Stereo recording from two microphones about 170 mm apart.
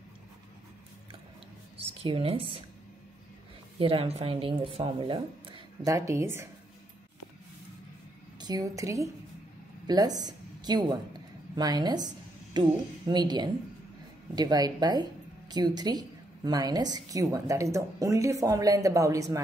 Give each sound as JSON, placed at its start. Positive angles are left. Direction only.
{"t": 1.8, "sound": "speech", "side_deg": -35}
{"t": 3.8, "sound": "a woman's voice", "side_deg": -35}
{"t": 8.4, "sound": "speech", "side_deg": -20}